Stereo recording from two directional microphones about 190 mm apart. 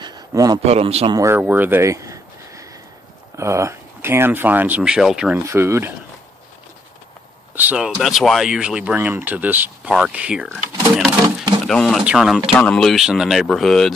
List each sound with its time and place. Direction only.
0.0 s a sound: 20° right (ahead or behind)
0.7 s a man's voice: 30° right (ahead or behind)
1.1 s speech: 15° right (ahead or behind)
5.4 s speech: 15° right (ahead or behind)
7.5 s speech: 5° right (ahead or behind)
11.2 s a sound: 20° right (ahead or behind)
11.6 s speech: centre (ahead or behind)